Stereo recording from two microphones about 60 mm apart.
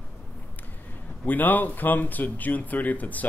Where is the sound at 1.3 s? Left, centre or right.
Left.